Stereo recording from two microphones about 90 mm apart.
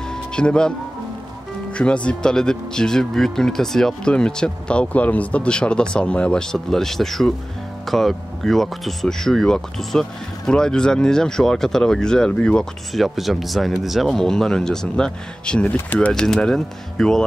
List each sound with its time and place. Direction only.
0.1 s music: 10° left (ahead or behind)
1.7 s speech: 10° left (ahead or behind)
15.6 s speech: 20° left (ahead or behind)
16.1 s speech: 5° left (ahead or behind)